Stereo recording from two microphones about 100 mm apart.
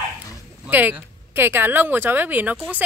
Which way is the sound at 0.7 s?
20° right (ahead or behind).